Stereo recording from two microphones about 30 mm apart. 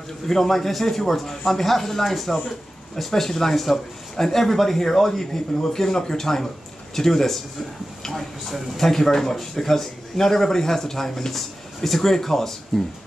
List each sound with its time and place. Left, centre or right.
0.3 s speech: centre